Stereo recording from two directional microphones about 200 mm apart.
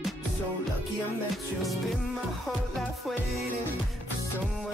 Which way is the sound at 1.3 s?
Centre (ahead or behind).